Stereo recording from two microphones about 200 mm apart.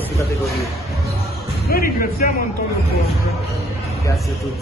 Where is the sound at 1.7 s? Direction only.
45° left (ahead or behind).